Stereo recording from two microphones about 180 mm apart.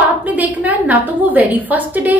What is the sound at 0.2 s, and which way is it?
A woman's voice, 10° right (ahead or behind).